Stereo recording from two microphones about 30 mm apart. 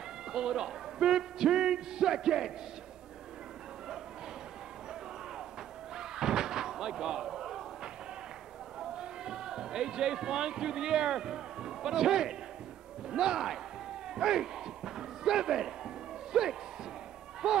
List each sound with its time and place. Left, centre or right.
0.3 s a man's voice: right
5.9 s slam: centre
8.9 s a man's voice: right
14.0 s a sound: right
16.3 s a man's voice: right